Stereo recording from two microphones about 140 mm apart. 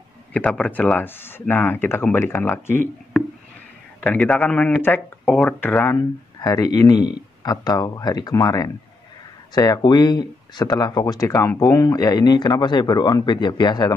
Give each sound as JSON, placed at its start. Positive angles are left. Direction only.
{"t": 0.3, "sound": "speech", "side_deg": 10}
{"t": 4.0, "sound": "speech", "side_deg": 10}
{"t": 5.9, "sound": "speech", "side_deg": 25}